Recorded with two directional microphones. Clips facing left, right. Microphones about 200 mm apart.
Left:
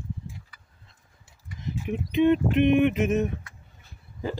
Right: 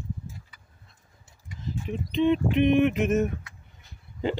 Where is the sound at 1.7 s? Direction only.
60° left (ahead or behind).